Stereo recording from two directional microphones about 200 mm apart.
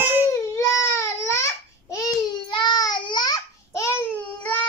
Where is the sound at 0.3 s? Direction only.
15° left (ahead or behind).